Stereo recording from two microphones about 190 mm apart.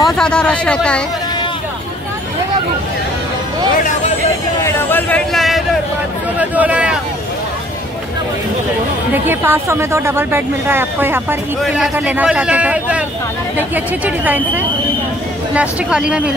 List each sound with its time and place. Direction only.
0.0 s speech: 5° left (ahead or behind)
4.6 s speech: 10° left (ahead or behind); by 7.0 s 5° right (ahead or behind)
9.3 s speech: 10° right (ahead or behind)